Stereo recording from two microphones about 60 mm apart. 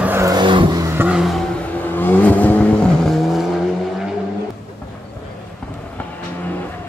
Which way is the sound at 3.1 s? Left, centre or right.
Centre.